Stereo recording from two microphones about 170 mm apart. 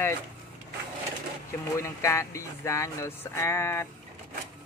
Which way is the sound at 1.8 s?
15° left (ahead or behind).